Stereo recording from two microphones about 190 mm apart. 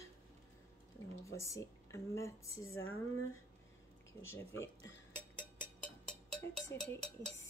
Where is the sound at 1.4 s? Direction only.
15° left (ahead or behind).